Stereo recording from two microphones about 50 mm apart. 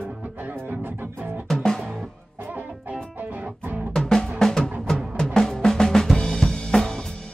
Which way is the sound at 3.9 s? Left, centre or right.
Centre.